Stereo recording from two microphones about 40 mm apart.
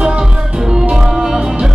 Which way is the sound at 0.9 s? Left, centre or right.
Centre.